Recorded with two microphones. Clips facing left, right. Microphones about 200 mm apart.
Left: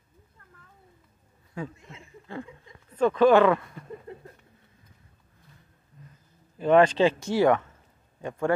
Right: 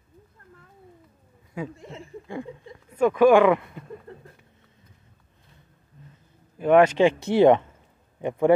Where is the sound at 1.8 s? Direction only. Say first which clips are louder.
Right 9 dB; 35° right (ahead or behind).